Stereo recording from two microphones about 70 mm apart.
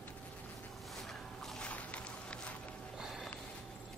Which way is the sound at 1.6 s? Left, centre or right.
Centre.